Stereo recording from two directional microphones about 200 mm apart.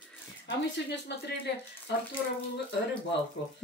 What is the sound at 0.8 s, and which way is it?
Speech, 55° left (ahead or behind).